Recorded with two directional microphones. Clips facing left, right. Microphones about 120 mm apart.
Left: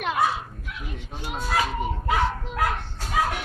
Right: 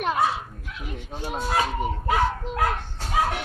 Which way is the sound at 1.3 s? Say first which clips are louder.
Right 1 dB; 25° right (ahead or behind).